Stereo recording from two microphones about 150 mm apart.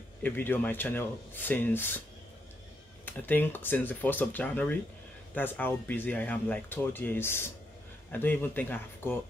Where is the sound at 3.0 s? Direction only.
10° left (ahead or behind).